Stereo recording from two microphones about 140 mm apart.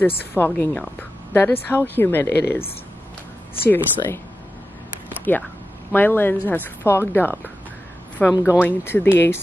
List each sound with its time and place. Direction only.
0.0 s a woman's voice: 15° left (ahead or behind)
3.7 s a woman's voice: 15° left (ahead or behind)
5.3 s a woman's voice: 15° left (ahead or behind)